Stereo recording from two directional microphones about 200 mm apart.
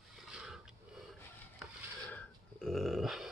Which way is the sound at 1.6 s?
5° left (ahead or behind).